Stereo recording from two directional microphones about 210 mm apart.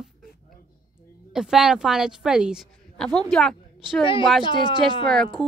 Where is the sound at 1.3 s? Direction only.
Centre (ahead or behind).